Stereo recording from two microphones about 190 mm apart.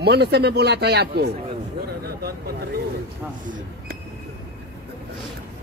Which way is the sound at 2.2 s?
55° right (ahead or behind).